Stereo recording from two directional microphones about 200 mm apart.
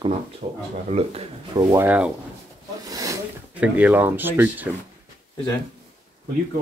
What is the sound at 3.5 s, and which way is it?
Speech, 5° right (ahead or behind).